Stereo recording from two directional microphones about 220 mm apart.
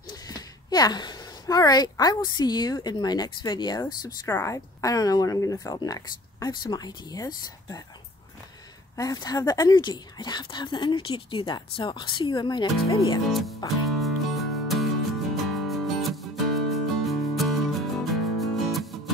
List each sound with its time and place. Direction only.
0.1 s a woman's voice: 15° left (ahead or behind)
8.9 s speech: 15° left (ahead or behind)
13.8 s music: centre (ahead or behind)